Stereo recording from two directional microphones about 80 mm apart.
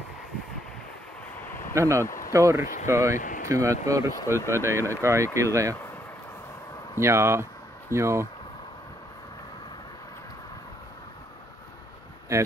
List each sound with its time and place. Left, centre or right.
1.7 s speech: right
7.0 s speech: right
12.3 s speech: right